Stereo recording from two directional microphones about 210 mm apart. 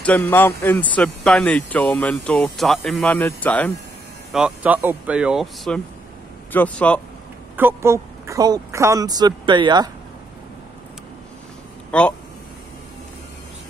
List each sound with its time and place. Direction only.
0.0 s speech: 10° left (ahead or behind)
7.5 s speech: 10° right (ahead or behind)
11.9 s speech: 5° left (ahead or behind)